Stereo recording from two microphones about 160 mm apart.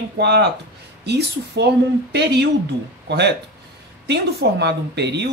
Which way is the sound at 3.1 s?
90° right.